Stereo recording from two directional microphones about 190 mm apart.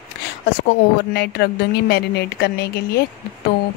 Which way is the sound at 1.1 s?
60° left (ahead or behind).